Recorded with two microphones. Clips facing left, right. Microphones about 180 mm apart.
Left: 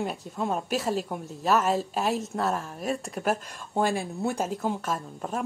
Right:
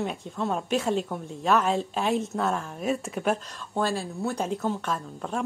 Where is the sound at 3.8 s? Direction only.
15° left (ahead or behind).